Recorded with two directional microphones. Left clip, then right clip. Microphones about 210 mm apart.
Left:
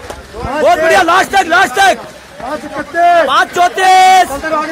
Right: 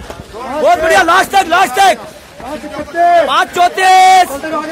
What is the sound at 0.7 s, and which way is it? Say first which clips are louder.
A man's voice: even; 10° left (ahead or behind).